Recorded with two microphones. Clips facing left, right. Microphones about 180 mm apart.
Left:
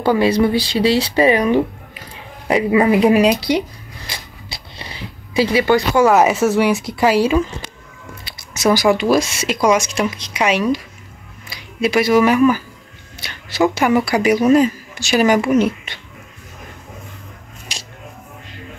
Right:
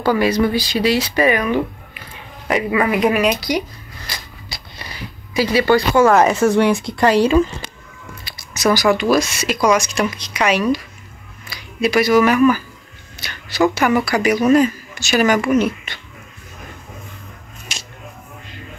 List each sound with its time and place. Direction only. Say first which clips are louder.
0.0 s speech: left 2 dB; 25° left (ahead or behind); by 7.4 s 5° left (ahead or behind)
8.2 s squish: even; 20° left (ahead or behind)
8.9 s speech: left 1 dB; 25° left (ahead or behind)
11.8 s speech: even; 25° left (ahead or behind)
13.2 s a sound: even; 25° left (ahead or behind)
13.7 s speech: left 1 dB; 25° left (ahead or behind)
17.7 s a sound: even; 35° left (ahead or behind)